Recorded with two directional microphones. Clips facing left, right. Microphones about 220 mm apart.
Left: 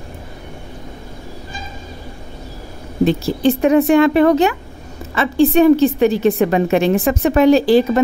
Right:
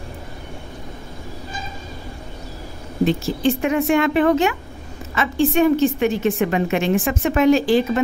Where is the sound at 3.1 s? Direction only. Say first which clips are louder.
Left 4 dB; 35° left (ahead or behind).